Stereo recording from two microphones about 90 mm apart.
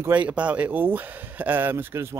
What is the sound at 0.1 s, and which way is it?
A man's voice, 15° right (ahead or behind).